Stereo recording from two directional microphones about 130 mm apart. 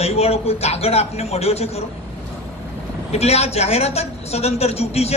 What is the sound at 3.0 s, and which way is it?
A man's voice, 55° left (ahead or behind).